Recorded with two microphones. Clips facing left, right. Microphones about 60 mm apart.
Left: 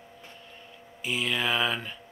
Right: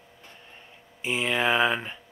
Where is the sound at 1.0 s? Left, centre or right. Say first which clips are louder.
Right 3 dB; right.